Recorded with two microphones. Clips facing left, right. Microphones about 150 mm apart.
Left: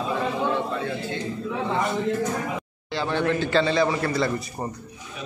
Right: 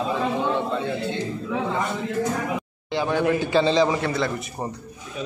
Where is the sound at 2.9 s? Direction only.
10° right (ahead or behind).